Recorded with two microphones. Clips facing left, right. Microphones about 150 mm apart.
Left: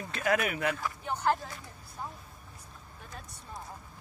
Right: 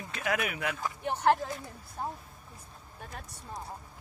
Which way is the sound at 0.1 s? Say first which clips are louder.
Left 3 dB; 5° right (ahead or behind).